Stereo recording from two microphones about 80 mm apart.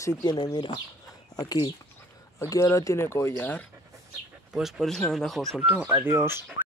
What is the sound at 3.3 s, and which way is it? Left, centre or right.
Speech, centre.